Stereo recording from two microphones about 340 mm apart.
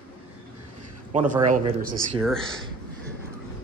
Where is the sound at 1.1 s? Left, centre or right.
Right.